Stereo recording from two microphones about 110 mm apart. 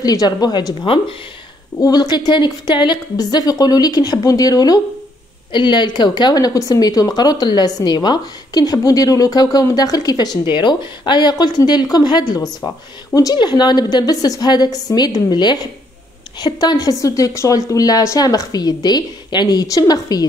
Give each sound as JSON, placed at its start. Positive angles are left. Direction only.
{"t": 0.0, "sound": "speech", "side_deg": 35}